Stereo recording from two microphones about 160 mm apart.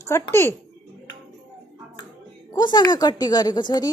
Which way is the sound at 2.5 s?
25° left (ahead or behind).